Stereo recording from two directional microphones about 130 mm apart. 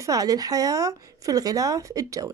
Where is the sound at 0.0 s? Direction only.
25° right (ahead or behind).